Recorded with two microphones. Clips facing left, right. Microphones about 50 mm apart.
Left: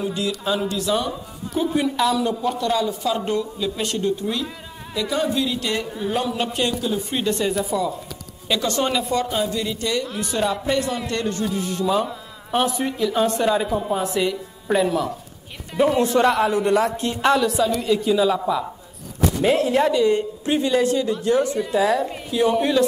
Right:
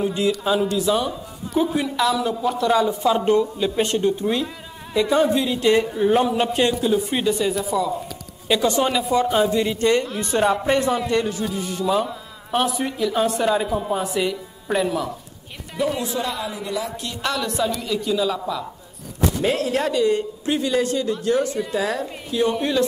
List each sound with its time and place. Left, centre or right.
0.0 s speech: right
0.4 s a man's voice: centre
2.9 s speech: right
4.9 s a man's voice: centre
8.5 s a man's voice: centre
9.2 s speech: right
11.0 s a woman's voice: centre
16.0 s speech: left
16.9 s a man's voice: left
17.4 s a woman's voice: centre
19.5 s a man's voice: left
21.7 s a man's voice: left
22.3 s a woman's voice: centre